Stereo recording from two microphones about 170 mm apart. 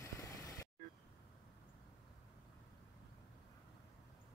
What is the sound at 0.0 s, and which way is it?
Vehicle, 20° left (ahead or behind).